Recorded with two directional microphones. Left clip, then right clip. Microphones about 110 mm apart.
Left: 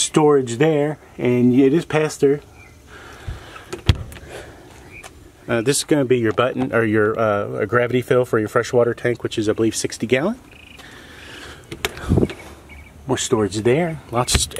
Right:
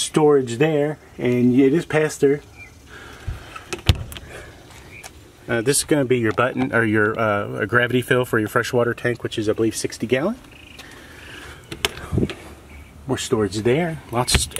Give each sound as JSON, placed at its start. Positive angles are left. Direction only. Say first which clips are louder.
{"t": 0.1, "sound": "speech", "louder": "even", "side_deg": 10}
{"t": 5.5, "sound": "speech", "louder": "left 1 dB", "side_deg": 15}
{"t": 13.0, "sound": "speech", "louder": "left 2 dB", "side_deg": 25}
{"t": 13.5, "sound": "speech", "louder": "left 2 dB", "side_deg": 5}